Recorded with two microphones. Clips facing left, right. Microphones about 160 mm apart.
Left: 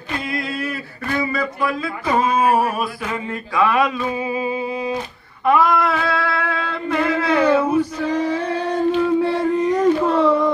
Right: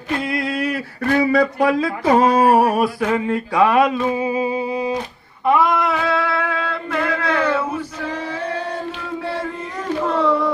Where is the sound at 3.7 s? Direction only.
40° right (ahead or behind).